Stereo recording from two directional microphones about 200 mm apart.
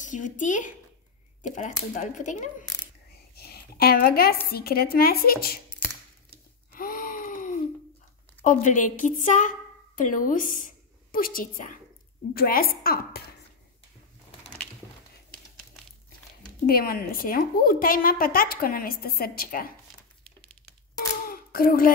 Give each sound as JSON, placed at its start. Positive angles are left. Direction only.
{"t": 0.0, "sound": "speech", "side_deg": 40}
{"t": 3.3, "sound": "a woman's voice", "side_deg": 50}
{"t": 6.7, "sound": "gasp", "side_deg": 45}
{"t": 8.5, "sound": "a woman's voice", "side_deg": 40}
{"t": 16.6, "sound": "speech", "side_deg": 50}
{"t": 21.3, "sound": "a sound", "side_deg": 45}